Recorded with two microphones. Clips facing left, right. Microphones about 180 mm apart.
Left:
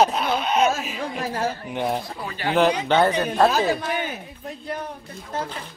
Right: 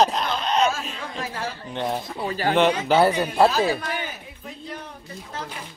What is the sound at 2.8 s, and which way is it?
Speech, 5° right (ahead or behind).